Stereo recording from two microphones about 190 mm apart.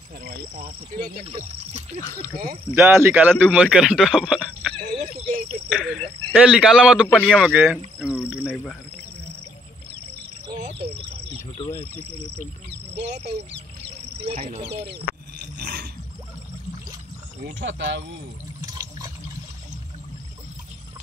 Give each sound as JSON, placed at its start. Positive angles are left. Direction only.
{"t": 0.2, "sound": "speech", "side_deg": -50}
{"t": 1.2, "sound": "speech", "side_deg": -30}
{"t": 2.3, "sound": "speech", "side_deg": -50}
{"t": 2.7, "sound": "a man's voice", "side_deg": -10}
{"t": 4.9, "sound": "speech", "side_deg": -35}
{"t": 5.7, "sound": "speech", "side_deg": -5}
{"t": 10.6, "sound": "cricket", "side_deg": -30}
{"t": 12.9, "sound": "speech", "side_deg": -65}
{"t": 14.2, "sound": "speech", "side_deg": -35}
{"t": 15.6, "sound": "a sound", "side_deg": -55}
{"t": 17.6, "sound": "speech", "side_deg": -65}
{"t": 18.8, "sound": "water", "side_deg": -20}